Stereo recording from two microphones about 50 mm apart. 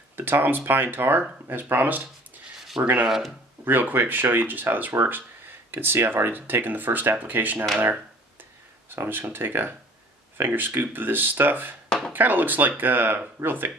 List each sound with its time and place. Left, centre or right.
0.1 s speech: right
3.6 s speech: right
8.9 s speech: right